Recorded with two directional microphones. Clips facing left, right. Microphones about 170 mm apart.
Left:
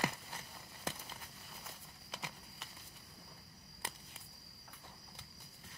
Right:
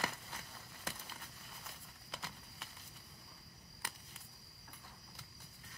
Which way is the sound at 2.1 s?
Centre (ahead or behind).